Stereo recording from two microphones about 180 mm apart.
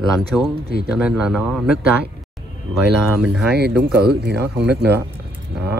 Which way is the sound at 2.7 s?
5° right (ahead or behind).